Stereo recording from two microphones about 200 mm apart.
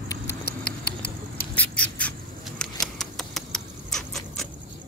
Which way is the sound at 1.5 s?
5° left (ahead or behind).